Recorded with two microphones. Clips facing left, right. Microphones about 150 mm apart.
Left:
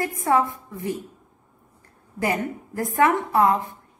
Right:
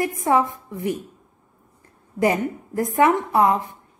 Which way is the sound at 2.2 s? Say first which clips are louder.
Right 5 dB; 20° right (ahead or behind).